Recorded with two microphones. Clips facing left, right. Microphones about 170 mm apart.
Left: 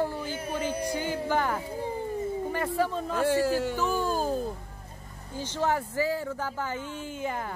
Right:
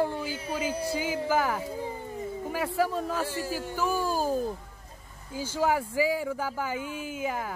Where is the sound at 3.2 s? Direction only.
65° left (ahead or behind).